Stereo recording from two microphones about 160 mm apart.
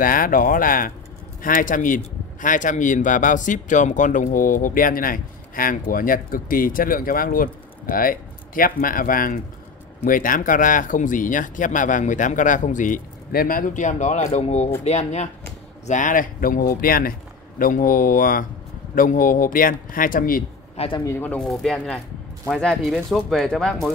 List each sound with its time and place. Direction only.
0.0 s speech: 60° left (ahead or behind); by 15.2 s 45° left (ahead or behind)
15.9 s speech: 55° left (ahead or behind)
20.7 s speech: 35° left (ahead or behind)
21.0 s speech: 15° left (ahead or behind)